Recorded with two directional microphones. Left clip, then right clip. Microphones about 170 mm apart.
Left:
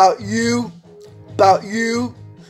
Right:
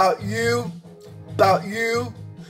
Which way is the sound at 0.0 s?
30° left (ahead or behind).